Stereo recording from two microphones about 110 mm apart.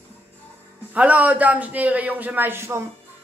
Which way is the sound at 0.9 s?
10° right (ahead or behind).